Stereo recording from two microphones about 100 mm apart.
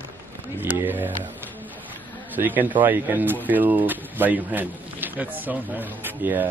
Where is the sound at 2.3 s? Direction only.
20° right (ahead or behind).